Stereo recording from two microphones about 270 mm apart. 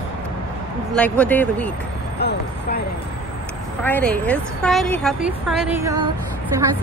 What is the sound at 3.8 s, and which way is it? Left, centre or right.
A woman's voice, centre.